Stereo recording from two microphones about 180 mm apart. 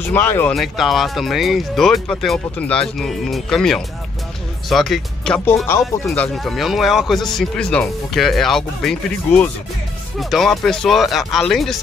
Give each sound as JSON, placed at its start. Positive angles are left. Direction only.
{"t": 0.0, "sound": "speech", "side_deg": 10}
{"t": 0.6, "sound": "speech", "side_deg": 0}